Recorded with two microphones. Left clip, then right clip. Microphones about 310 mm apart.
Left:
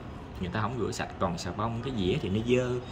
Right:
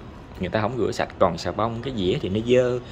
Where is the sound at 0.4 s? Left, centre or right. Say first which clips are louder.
Right 9 dB; centre.